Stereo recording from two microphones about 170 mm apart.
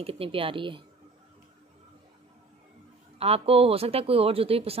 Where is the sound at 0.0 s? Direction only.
35° right (ahead or behind).